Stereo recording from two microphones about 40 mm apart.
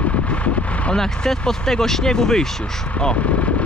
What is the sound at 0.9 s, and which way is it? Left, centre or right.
Speech, centre.